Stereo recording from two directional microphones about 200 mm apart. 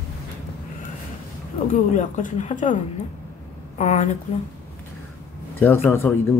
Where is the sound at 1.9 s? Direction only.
40° left (ahead or behind).